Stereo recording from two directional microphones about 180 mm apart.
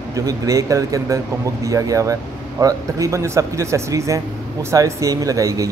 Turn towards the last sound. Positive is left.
turn(degrees=-20)  # may be behind; listen again after turning